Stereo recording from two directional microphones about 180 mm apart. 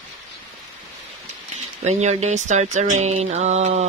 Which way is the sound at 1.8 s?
40° right (ahead or behind).